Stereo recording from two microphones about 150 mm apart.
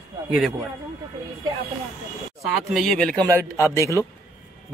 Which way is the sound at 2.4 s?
Centre (ahead or behind).